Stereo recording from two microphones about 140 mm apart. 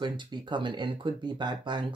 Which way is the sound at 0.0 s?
35° right (ahead or behind).